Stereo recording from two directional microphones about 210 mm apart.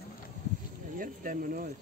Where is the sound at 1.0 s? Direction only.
40° right (ahead or behind).